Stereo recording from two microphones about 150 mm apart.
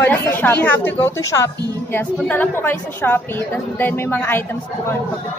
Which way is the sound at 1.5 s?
25° right (ahead or behind).